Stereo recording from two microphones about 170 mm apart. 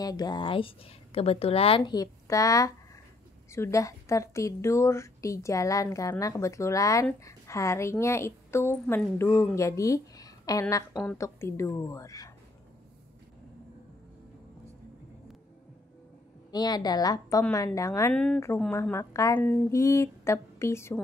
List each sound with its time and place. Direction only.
0.0 s a woman's voice: 20° left (ahead or behind)
1.8 s a woman's voice: 20° left (ahead or behind)
16.5 s a woman's voice: 25° left (ahead or behind)
18.1 s a woman's voice: 5° left (ahead or behind)